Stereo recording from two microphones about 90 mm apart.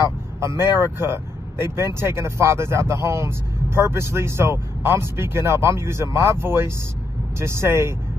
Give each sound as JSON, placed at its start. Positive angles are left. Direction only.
{"t": 0.4, "sound": "speech", "side_deg": -30}